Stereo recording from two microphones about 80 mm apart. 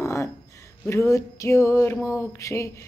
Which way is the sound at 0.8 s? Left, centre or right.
Left.